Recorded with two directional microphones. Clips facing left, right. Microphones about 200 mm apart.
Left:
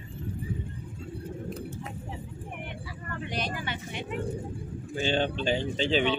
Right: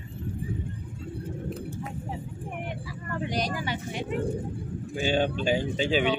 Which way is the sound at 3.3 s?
35° right (ahead or behind).